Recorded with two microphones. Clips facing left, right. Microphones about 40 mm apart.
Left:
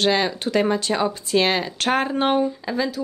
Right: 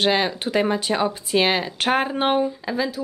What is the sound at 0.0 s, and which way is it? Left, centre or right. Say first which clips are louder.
Speech: even; centre.